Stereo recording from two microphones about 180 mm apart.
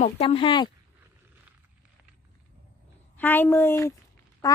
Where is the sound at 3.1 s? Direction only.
10° left (ahead or behind).